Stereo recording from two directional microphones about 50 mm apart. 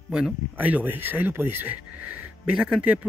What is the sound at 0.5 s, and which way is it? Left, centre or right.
Speech, right.